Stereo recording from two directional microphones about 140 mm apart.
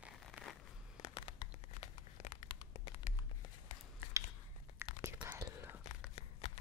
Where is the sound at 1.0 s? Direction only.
30° left (ahead or behind).